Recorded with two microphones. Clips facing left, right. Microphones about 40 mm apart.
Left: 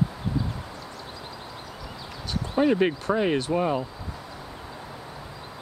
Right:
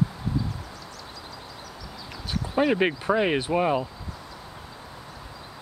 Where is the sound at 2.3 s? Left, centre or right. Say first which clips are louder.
Left 1 dB; centre.